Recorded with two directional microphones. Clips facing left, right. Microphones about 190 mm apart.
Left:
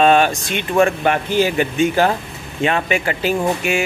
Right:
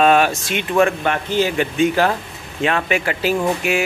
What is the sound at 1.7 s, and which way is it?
Speech, centre (ahead or behind).